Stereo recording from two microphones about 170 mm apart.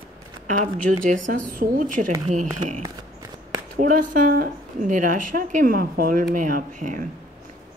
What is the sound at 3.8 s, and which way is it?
Speech, 50° right (ahead or behind).